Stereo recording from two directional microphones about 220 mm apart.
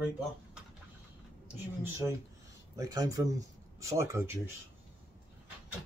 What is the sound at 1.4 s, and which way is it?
Speech, 10° right (ahead or behind).